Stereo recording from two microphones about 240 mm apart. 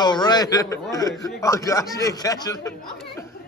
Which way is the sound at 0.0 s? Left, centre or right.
Centre.